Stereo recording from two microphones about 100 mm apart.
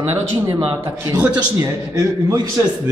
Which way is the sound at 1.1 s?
35° right (ahead or behind).